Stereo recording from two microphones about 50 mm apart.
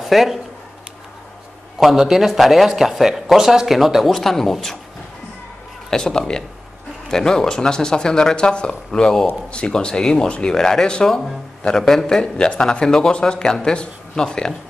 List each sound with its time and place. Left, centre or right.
0.0 s speech: centre
1.8 s speech: centre
5.9 s a man's voice: centre
9.5 s a man's voice: centre